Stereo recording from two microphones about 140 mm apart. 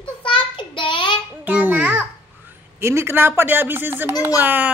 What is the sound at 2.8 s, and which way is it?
Speech, 20° right (ahead or behind).